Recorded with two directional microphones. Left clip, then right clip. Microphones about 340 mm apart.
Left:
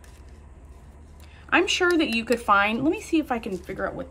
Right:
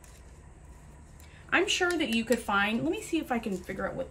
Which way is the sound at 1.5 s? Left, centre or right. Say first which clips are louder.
Left 6 dB; centre.